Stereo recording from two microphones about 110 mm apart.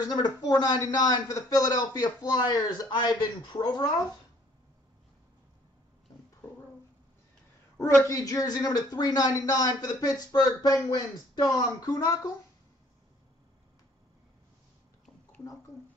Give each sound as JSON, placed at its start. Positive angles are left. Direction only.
{"t": 0.0, "sound": "speech", "side_deg": 35}
{"t": 6.1, "sound": "a sound", "side_deg": 35}
{"t": 7.8, "sound": "speech", "side_deg": 25}